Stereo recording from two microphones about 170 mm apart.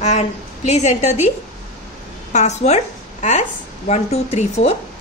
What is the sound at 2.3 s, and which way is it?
A woman's voice, 45° left (ahead or behind).